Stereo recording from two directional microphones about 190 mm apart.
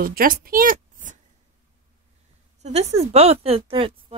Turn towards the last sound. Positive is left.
turn(degrees=-30)  # may be behind; listen again after turning